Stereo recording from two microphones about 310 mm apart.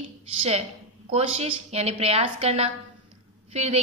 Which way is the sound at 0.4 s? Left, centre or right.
Centre.